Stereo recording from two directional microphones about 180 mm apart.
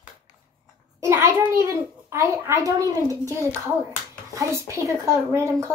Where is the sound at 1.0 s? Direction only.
15° right (ahead or behind).